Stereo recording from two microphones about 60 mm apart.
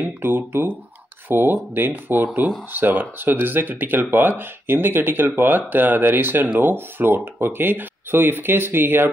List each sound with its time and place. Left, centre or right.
0.0 s speech: right